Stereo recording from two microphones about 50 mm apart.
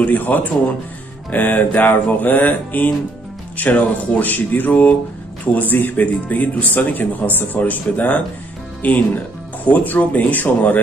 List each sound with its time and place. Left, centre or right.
0.0 s speech: left